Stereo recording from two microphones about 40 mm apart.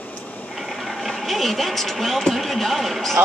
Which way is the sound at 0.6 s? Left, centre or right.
Centre.